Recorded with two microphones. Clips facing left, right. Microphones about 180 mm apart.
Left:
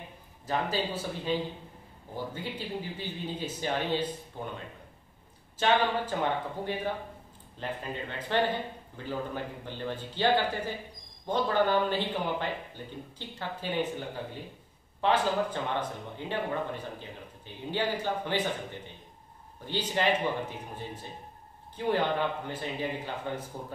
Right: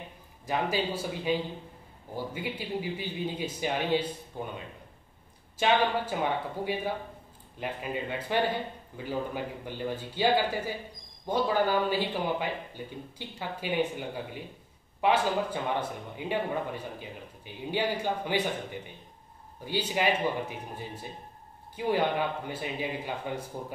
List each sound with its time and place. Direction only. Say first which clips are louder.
0.5 s speech: right 1 dB; 10° right (ahead or behind)
5.6 s speech: right 1 dB; 10° right (ahead or behind)